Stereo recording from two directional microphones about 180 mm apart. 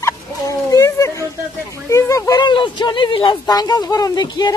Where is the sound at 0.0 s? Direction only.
20° left (ahead or behind).